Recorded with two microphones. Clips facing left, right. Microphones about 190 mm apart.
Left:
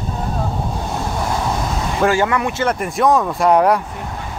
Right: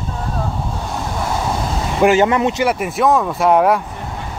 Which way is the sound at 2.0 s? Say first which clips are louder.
Right 4 dB; 20° right (ahead or behind).